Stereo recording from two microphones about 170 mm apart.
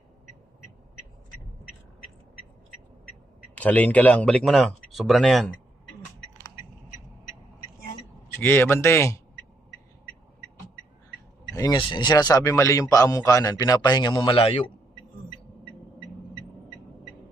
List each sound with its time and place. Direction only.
3.5 s speech: 10° left (ahead or behind)
8.3 s a man's voice: 15° left (ahead or behind)
11.5 s a man's voice: 25° left (ahead or behind)